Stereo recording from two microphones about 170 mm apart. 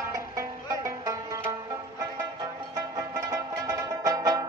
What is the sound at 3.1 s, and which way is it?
Music, 20° right (ahead or behind).